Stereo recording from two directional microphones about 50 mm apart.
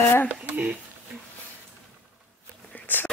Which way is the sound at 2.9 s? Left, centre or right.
Left.